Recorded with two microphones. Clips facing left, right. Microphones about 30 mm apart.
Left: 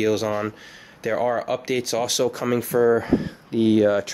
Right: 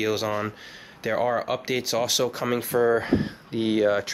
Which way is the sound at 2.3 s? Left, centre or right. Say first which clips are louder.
Left 3 dB; centre.